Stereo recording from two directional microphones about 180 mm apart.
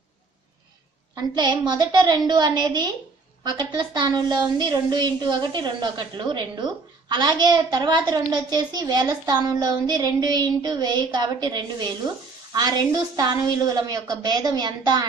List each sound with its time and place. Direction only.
1.1 s a woman's voice: 25° right (ahead or behind)